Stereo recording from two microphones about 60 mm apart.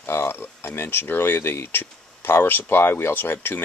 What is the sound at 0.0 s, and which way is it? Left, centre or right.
Speech, left.